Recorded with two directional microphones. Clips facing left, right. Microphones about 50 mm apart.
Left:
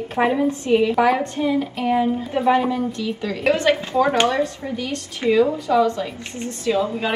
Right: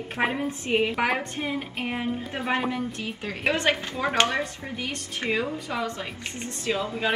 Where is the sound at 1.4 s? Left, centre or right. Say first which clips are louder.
Left 9 dB; right.